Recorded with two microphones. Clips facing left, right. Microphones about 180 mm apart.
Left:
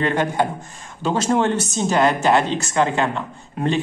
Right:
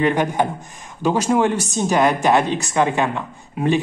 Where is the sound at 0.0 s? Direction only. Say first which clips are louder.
Right 2 dB; 15° right (ahead or behind).